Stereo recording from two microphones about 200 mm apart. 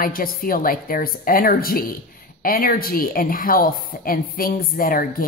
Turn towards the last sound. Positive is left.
turn(degrees=45)  # may be behind; listen again after turning